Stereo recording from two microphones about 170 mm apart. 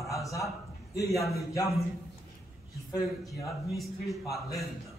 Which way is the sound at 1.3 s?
20° left (ahead or behind).